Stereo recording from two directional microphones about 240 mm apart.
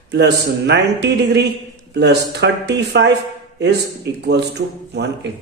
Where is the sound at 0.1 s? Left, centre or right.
Right.